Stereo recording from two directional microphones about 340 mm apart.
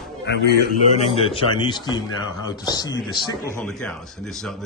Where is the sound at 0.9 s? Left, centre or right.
Centre.